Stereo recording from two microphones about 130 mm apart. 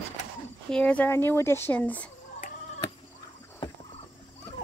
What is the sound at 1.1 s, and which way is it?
Speech, 20° left (ahead or behind).